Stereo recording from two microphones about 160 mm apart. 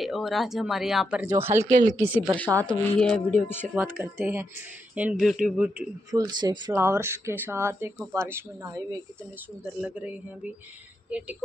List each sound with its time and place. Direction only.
0.0 s speech: centre (ahead or behind)
1.4 s speech: 15° right (ahead or behind)
1.7 s speech: 50° right (ahead or behind)
2.0 s speech: 10° right (ahead or behind)
2.9 s speech: 5° left (ahead or behind)
3.7 s speech: 10° right (ahead or behind)
6.1 s speech: 25° right (ahead or behind)
6.7 s speech: 15° right (ahead or behind)